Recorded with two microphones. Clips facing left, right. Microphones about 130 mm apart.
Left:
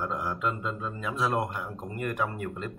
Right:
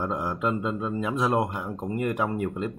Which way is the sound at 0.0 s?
25° right (ahead or behind).